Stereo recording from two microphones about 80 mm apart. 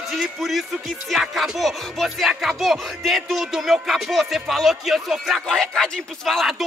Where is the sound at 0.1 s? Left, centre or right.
Centre.